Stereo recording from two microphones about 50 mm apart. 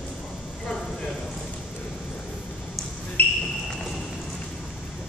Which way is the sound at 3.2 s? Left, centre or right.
Left.